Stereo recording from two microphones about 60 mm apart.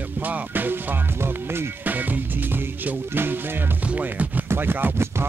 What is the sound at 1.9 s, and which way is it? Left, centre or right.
Music, right.